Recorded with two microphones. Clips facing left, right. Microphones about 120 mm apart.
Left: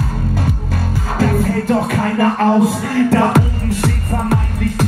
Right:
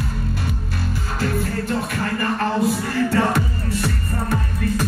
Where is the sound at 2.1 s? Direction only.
90° left.